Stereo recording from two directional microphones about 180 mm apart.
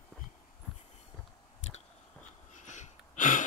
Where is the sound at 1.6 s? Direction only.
40° left (ahead or behind).